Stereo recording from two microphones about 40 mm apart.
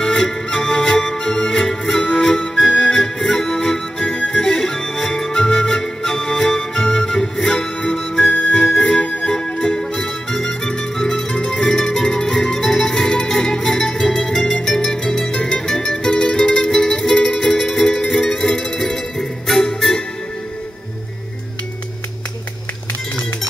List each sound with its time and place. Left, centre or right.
0.0 s music: centre